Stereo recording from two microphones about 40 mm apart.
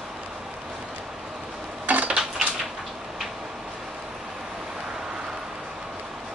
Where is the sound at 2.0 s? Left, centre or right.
Right.